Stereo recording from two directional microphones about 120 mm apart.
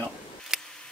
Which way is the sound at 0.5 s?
5° right (ahead or behind).